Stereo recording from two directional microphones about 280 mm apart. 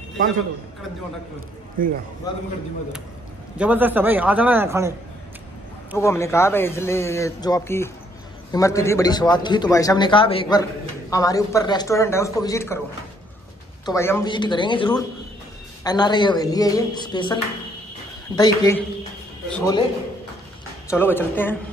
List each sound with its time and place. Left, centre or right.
1.8 s a man's voice: right
2.3 s a man's voice: centre
3.5 s a man's voice: centre
5.9 s a man's voice: centre
13.8 s a man's voice: centre
20.9 s a man's voice: centre